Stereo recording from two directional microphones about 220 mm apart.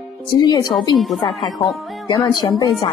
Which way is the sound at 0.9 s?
Centre (ahead or behind).